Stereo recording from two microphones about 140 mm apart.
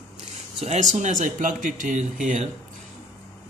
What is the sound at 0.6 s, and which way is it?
Speech, 55° right (ahead or behind).